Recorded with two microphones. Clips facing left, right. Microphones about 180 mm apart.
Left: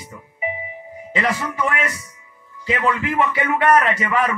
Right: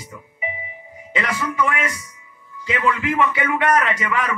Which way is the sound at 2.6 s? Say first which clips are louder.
Left 1 dB; 35° left (ahead or behind).